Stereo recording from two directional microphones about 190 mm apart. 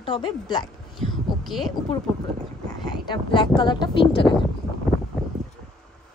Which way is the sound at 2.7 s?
20° left (ahead or behind).